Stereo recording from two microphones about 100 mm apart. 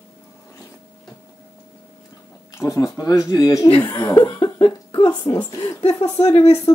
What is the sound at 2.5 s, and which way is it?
Speech, 30° left (ahead or behind).